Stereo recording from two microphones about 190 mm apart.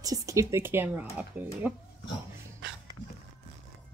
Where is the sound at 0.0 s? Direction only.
20° right (ahead or behind).